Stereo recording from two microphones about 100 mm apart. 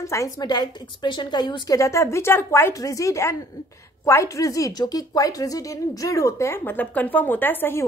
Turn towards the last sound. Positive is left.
turn(degrees=20)  # may be behind; listen again after turning